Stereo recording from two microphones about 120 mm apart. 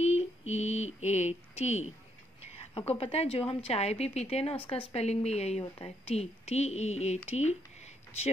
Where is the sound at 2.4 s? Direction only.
60° left (ahead or behind).